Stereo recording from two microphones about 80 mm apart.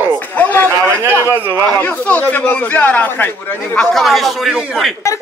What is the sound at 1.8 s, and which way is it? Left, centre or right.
A man's voice, left.